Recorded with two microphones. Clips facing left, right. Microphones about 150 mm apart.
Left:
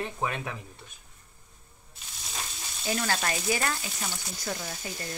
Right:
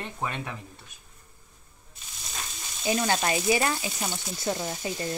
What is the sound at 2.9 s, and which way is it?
Speech, 20° right (ahead or behind).